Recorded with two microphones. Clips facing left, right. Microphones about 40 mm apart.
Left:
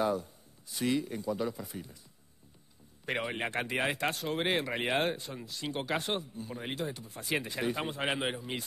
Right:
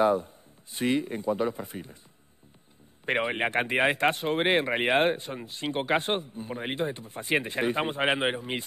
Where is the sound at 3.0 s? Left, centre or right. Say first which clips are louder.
Right 7 dB; right.